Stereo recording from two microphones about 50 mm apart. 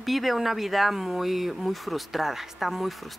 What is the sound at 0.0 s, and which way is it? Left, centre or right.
Speech, centre.